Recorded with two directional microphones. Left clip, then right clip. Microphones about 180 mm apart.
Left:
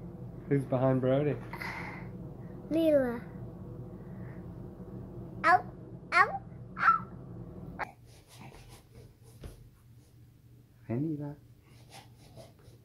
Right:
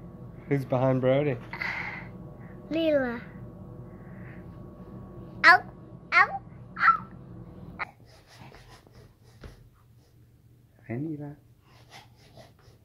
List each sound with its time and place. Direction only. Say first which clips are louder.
0.5 s speech: right 3 dB; 35° right (ahead or behind)
1.5 s a sound: right 7 dB; 5° left (ahead or behind)
2.7 s a child's voice: right 1 dB; 10° left (ahead or behind)
5.4 s a child's voice: right 7 dB; 5° right (ahead or behind)
6.0 s babbling: right 4 dB; 20° left (ahead or behind)
10.9 s a sound: even; centre (ahead or behind)